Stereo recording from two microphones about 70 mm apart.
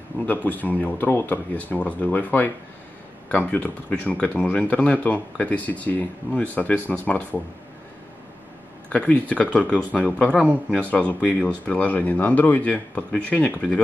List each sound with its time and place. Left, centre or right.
0.3 s speech: left
8.8 s speech: left